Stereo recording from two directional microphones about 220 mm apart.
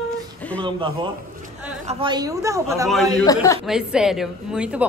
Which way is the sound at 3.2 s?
15° left (ahead or behind).